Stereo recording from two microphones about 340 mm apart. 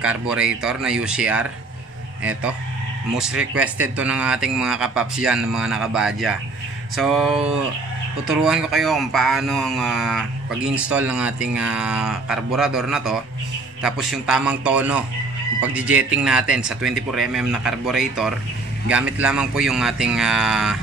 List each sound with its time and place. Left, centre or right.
0.0 s speech: centre
3.2 s speech: centre